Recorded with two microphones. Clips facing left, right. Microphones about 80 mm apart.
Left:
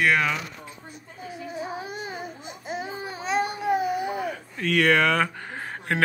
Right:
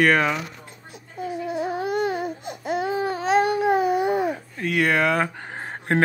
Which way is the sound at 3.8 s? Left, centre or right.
Right.